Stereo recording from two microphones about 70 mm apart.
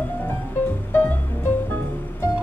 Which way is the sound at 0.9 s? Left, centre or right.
Left.